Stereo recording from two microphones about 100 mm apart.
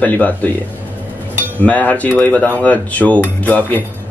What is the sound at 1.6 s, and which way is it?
Speech, 15° left (ahead or behind).